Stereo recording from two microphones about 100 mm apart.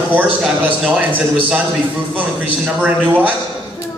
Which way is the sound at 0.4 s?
15° right (ahead or behind).